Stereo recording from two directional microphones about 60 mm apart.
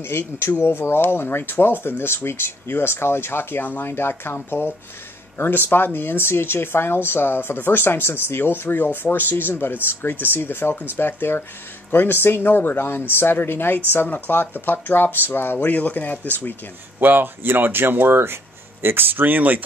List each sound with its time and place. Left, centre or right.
0.0 s speech: left
17.0 s speech: right